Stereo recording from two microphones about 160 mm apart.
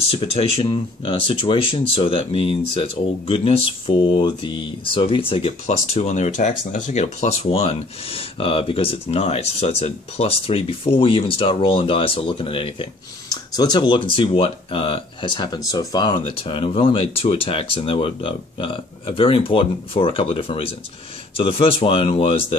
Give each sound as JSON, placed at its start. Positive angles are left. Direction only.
{"t": 0.1, "sound": "speech", "side_deg": 35}